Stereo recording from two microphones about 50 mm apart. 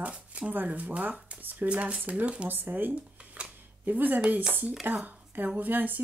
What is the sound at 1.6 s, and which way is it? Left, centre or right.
Speech, right.